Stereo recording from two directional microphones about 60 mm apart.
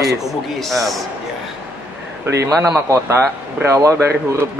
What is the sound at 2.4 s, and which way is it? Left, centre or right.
Speech, right.